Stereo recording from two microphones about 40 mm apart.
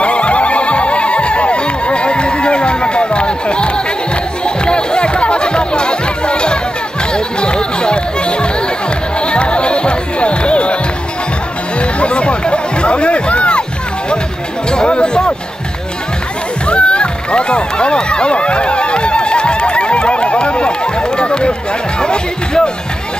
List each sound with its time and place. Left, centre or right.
0.0 s neigh: left
4.5 s music: left
11.8 s music: left
14.7 s music: left
16.6 s music: left